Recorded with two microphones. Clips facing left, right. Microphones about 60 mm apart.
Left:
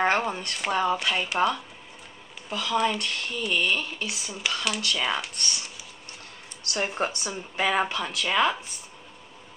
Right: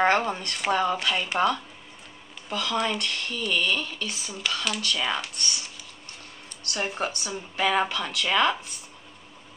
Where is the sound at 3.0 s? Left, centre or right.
Centre.